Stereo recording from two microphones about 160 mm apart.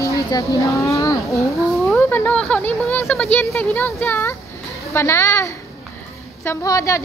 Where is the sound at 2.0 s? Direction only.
10° left (ahead or behind).